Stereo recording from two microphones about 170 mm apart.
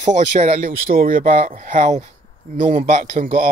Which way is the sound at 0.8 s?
60° right (ahead or behind).